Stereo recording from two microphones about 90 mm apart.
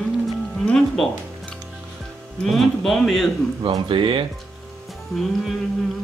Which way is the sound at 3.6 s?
70° right (ahead or behind).